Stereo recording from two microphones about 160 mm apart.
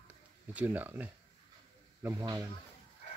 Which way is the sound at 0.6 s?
10° right (ahead or behind).